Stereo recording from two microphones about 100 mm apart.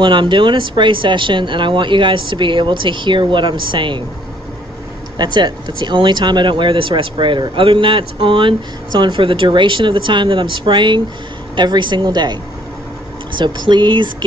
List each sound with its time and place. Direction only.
0.0 s speech: 50° right (ahead or behind)
5.2 s speech: 45° right (ahead or behind)
13.7 s speech: 50° right (ahead or behind)